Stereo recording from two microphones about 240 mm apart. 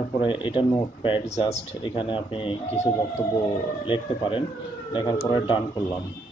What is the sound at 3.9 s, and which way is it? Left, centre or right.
Speech, left.